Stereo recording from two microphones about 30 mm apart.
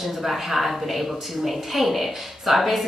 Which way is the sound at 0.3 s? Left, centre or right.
Centre.